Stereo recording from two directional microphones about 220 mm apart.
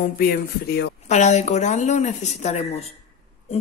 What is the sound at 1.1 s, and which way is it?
A woman's voice, 30° left (ahead or behind).